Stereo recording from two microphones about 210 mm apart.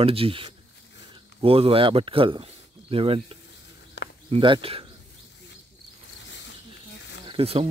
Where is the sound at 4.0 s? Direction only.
55° left (ahead or behind).